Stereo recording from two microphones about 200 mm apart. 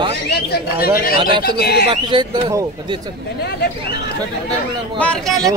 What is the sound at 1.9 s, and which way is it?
Speech, 25° right (ahead or behind).